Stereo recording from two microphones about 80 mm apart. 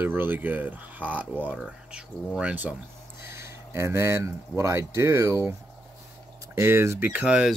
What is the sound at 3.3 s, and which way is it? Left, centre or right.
Speech, right.